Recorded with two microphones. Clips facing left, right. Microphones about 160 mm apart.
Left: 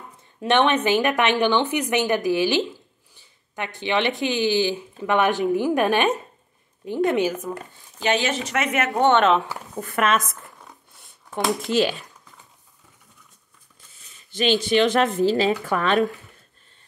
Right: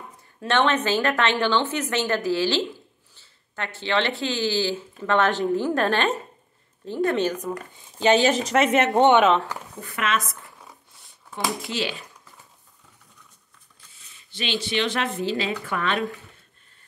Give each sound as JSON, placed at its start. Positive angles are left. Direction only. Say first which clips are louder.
{"t": 0.4, "sound": "speech", "louder": "left 3 dB", "side_deg": 15}
{"t": 8.0, "sound": "speech", "louder": "right 4 dB", "side_deg": -35}
{"t": 9.8, "sound": "speech", "louder": "left 5 dB", "side_deg": 45}
{"t": 11.7, "sound": "speech", "louder": "left 8 dB", "side_deg": 45}
{"t": 14.3, "sound": "speech", "louder": "left 7 dB", "side_deg": 45}